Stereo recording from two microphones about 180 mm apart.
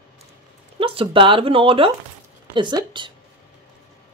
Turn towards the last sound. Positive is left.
turn(degrees=-25)  # may be behind; listen again after turning